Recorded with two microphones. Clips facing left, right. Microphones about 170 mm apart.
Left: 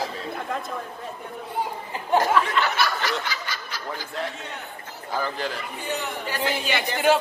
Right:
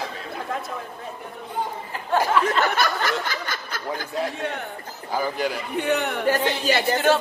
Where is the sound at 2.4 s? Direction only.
45° right (ahead or behind).